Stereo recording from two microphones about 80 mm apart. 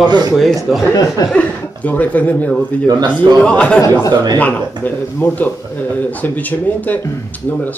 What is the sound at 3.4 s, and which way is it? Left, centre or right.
Speech, centre.